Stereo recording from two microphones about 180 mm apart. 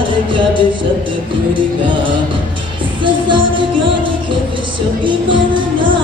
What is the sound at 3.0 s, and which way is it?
Music, 25° right (ahead or behind).